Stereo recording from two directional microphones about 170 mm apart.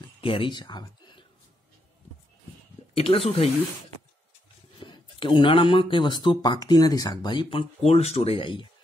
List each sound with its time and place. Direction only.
0.2 s speech: 30° left (ahead or behind)
3.0 s speech: 35° left (ahead or behind)
4.7 s speech: 30° left (ahead or behind)